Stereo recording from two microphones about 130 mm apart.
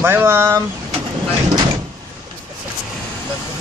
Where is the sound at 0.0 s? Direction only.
15° right (ahead or behind).